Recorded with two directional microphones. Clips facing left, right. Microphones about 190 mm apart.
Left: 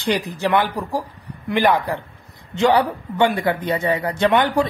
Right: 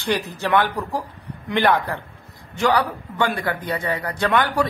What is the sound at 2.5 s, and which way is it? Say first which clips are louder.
A man's voice: left 3 dB; 25° left (ahead or behind).